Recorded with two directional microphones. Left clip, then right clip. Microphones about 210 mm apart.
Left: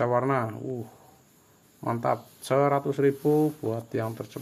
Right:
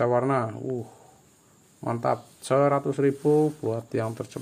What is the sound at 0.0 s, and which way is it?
Speech, 5° right (ahead or behind).